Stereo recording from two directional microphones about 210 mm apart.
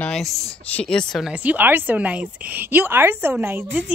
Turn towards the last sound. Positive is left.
turn(degrees=-5)  # may be behind; listen again after turning